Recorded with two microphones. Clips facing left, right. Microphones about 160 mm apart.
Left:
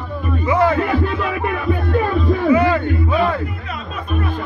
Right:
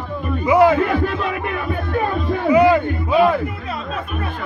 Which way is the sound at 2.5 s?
15° right (ahead or behind).